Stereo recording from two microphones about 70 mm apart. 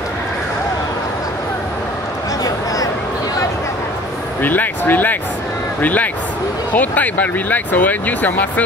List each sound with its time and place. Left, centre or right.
4.4 s speech: left